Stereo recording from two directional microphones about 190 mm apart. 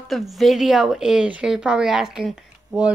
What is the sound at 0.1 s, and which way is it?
Speech, centre (ahead or behind).